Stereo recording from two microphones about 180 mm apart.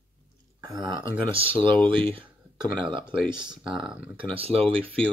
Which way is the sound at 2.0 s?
30° right (ahead or behind).